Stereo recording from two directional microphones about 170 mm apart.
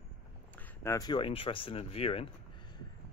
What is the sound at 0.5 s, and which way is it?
Speech, 15° left (ahead or behind).